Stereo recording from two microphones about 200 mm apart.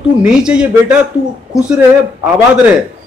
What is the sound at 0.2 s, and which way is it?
Speech, 5° right (ahead or behind).